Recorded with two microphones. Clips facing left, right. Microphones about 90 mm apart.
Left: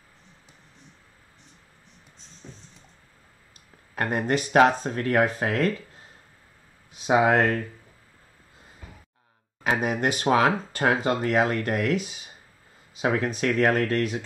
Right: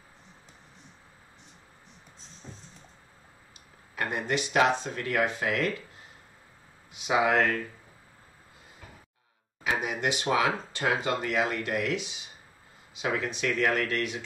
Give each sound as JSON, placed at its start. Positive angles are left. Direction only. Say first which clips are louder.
{"t": 2.4, "sound": "a sound", "louder": "left 1 dB", "side_deg": -15}
{"t": 3.9, "sound": "speech", "louder": "left 5 dB", "side_deg": 45}
{"t": 6.9, "sound": "speech", "louder": "left 5 dB", "side_deg": 40}
{"t": 9.6, "sound": "speech", "louder": "left 5 dB", "side_deg": 50}